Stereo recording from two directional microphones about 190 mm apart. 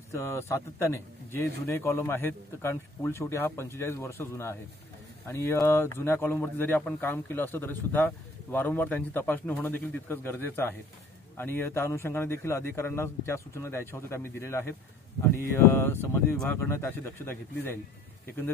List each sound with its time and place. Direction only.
0.1 s speech: 15° left (ahead or behind)